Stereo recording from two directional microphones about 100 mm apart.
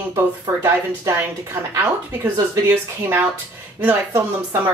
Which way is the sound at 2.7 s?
25° right (ahead or behind).